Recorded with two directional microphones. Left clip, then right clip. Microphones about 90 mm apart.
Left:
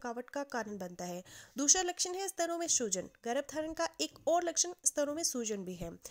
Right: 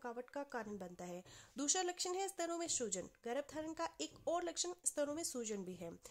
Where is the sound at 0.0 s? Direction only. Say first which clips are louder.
Left 7 dB; 40° left (ahead or behind).